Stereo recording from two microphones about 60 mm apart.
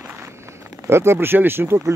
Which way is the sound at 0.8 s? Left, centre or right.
Right.